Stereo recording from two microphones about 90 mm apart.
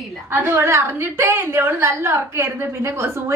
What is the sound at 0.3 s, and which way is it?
A woman's voice, 25° right (ahead or behind).